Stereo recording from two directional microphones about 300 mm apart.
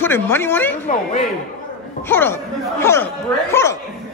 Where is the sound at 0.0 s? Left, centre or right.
Centre.